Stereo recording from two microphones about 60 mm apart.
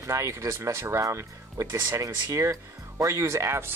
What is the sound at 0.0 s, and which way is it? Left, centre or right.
Speech, right.